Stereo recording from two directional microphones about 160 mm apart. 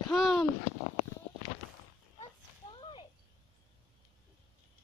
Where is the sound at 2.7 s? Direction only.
30° left (ahead or behind).